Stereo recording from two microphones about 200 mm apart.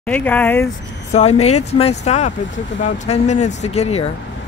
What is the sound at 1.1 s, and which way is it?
Speech, 30° left (ahead or behind).